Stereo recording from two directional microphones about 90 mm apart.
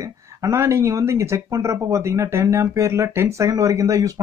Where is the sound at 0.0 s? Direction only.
35° right (ahead or behind).